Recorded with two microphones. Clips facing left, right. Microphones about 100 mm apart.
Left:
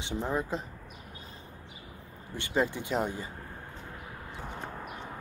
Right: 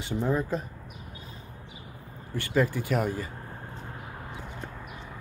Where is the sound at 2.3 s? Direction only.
20° left (ahead or behind).